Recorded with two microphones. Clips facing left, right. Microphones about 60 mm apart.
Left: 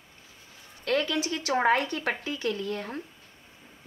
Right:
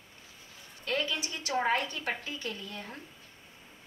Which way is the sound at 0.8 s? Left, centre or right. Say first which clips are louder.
Left 6 dB; left.